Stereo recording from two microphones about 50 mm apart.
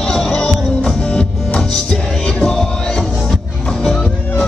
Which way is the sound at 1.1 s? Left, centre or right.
Centre.